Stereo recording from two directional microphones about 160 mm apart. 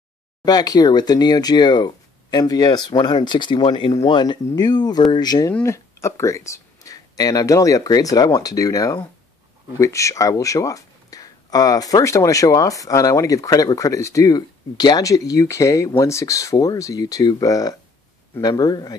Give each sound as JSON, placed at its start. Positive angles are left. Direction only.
{"t": 0.5, "sound": "speech", "side_deg": 25}